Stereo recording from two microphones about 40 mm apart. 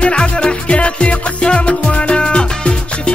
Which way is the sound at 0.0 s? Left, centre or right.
Left.